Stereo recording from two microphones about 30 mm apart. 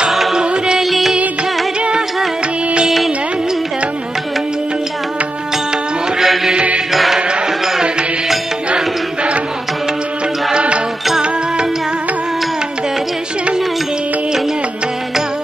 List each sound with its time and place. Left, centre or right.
0.3 s music: right
0.8 s music: centre
6.2 s music: centre